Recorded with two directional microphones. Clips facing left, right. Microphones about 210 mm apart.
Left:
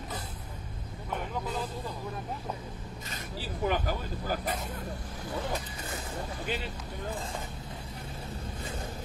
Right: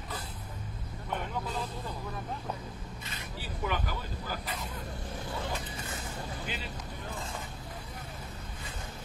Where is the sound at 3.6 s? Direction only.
45° left (ahead or behind).